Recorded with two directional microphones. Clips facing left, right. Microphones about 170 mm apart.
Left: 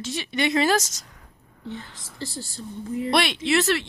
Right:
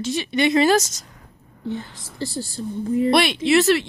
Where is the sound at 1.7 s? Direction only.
35° right (ahead or behind).